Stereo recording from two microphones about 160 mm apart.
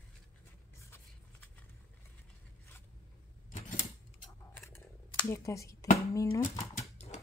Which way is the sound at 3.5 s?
50° left (ahead or behind).